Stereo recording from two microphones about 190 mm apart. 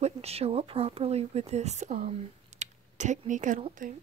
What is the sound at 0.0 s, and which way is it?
Speech, 35° right (ahead or behind).